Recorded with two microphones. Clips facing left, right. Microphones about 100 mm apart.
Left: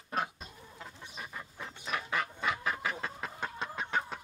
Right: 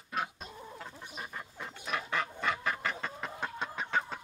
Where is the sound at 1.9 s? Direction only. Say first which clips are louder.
Even; 5° left (ahead or behind).